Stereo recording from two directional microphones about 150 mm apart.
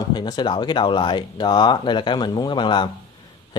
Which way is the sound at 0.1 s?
30° left (ahead or behind).